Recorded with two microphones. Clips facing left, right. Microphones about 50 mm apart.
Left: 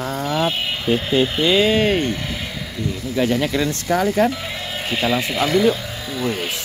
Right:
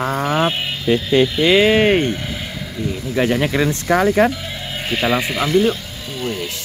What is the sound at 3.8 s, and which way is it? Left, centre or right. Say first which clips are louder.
Speech: right 3 dB; right.